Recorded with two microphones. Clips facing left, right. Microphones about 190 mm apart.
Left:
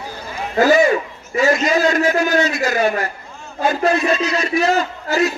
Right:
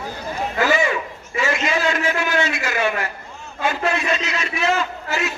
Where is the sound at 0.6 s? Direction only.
40° left (ahead or behind).